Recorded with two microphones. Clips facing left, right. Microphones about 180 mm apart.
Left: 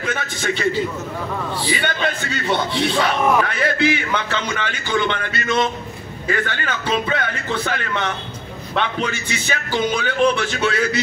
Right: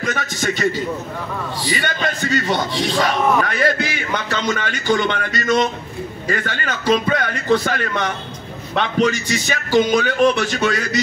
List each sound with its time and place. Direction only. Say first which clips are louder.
0.0 s a man's voice: right 2 dB; 40° right (ahead or behind)
1.7 s a man's voice: even; 40° right (ahead or behind)